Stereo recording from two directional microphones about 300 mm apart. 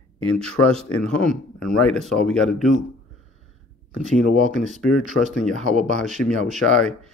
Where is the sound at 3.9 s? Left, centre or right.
Right.